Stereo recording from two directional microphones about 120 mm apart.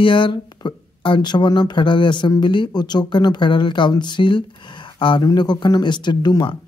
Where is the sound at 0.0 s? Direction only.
45° left (ahead or behind).